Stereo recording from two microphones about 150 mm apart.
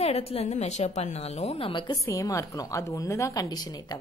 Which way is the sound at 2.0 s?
20° left (ahead or behind).